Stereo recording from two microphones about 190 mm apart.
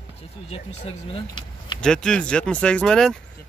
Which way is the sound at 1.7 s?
5° left (ahead or behind).